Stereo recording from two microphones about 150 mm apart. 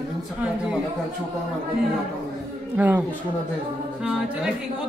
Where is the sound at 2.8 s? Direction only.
10° right (ahead or behind).